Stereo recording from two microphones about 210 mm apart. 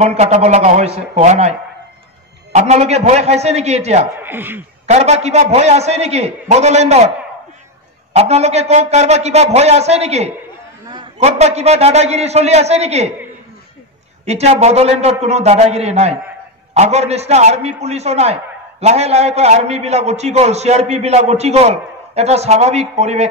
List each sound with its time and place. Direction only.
0.0 s a man's voice: 30° right (ahead or behind)
2.5 s a man's voice: 30° right (ahead or behind)
4.2 s speech: 10° right (ahead or behind)
4.8 s a man's voice: 30° right (ahead or behind)
8.1 s a man's voice: 30° right (ahead or behind)
14.2 s a man's voice: 30° right (ahead or behind)